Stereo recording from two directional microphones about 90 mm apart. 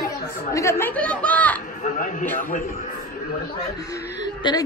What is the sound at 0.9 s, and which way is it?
Speech, 15° left (ahead or behind).